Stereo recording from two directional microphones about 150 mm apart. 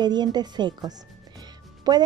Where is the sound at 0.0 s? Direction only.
30° right (ahead or behind).